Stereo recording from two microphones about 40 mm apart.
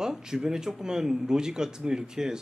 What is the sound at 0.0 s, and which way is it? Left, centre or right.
A man's voice, centre.